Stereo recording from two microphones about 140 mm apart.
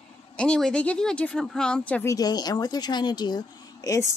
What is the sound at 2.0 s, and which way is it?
Speech, 25° left (ahead or behind).